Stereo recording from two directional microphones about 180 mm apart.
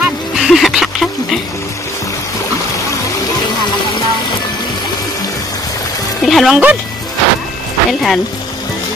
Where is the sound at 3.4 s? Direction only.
25° left (ahead or behind).